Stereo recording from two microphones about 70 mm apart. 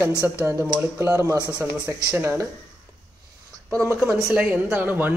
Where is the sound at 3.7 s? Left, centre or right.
Right.